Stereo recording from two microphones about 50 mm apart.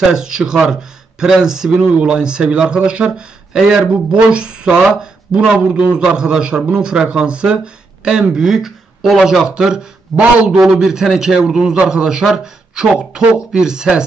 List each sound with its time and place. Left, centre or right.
0.1 s a man's voice: centre